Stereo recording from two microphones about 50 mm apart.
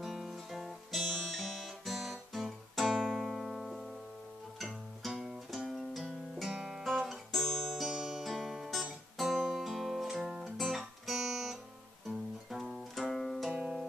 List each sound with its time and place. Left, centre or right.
0.0 s guitar: centre
3.2 s music: centre
6.5 s guitar: centre
6.8 s guitar: centre
7.3 s music: centre
12.4 s guitar: centre